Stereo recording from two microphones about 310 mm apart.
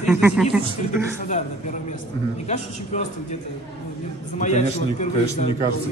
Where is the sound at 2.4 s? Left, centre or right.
Left.